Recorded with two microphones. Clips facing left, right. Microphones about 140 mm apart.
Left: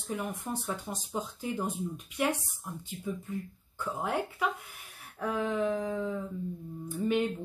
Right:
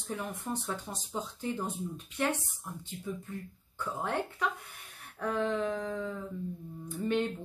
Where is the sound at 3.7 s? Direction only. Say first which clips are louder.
Left 1 dB; 10° left (ahead or behind).